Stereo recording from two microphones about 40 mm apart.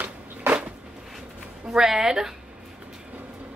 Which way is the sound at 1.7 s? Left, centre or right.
Centre.